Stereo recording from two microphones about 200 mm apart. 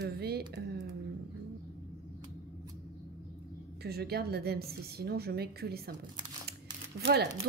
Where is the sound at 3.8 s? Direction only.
55° right (ahead or behind).